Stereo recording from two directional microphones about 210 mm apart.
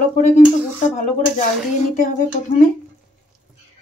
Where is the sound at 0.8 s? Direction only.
35° left (ahead or behind).